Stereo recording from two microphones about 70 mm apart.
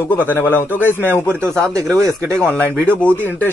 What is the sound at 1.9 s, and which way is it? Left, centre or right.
Speech, right.